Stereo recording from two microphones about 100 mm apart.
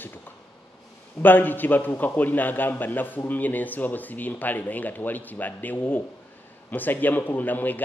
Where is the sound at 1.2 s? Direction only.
20° left (ahead or behind).